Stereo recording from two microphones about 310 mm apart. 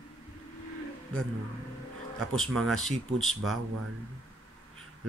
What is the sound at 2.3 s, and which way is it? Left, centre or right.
Speech, centre.